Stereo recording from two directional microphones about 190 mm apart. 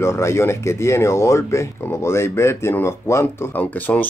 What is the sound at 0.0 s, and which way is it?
Speech, 15° left (ahead or behind).